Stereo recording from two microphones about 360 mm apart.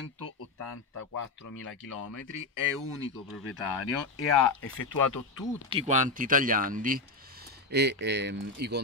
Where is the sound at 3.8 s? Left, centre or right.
Left.